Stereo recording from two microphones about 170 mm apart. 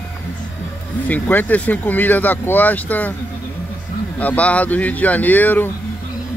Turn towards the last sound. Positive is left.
turn(degrees=10)  # may be behind; listen again after turning